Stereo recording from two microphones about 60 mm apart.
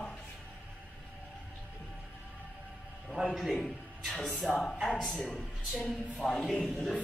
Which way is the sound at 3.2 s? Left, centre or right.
Centre.